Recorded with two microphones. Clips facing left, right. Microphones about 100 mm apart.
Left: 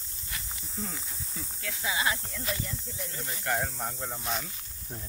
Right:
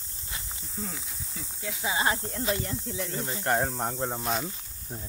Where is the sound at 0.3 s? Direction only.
25° right (ahead or behind).